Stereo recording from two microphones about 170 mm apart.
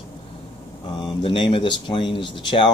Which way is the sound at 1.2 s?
30° left (ahead or behind).